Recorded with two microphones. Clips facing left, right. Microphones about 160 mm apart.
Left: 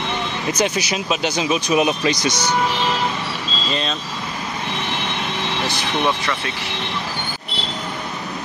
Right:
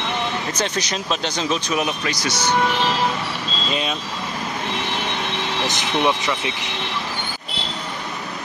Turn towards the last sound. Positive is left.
turn(degrees=-15)  # may be behind; listen again after turning